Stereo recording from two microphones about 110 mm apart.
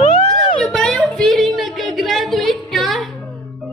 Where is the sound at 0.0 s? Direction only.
90° left.